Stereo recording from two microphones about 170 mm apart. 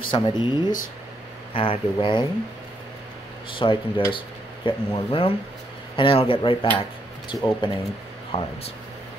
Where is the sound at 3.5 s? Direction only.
30° left (ahead or behind).